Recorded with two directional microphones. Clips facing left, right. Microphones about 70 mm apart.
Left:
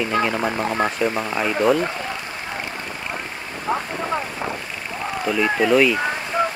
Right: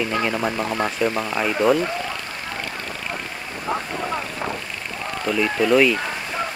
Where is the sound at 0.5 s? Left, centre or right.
Left.